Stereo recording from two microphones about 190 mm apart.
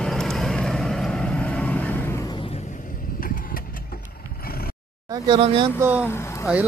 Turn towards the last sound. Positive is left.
turn(degrees=15)  # may be behind; listen again after turning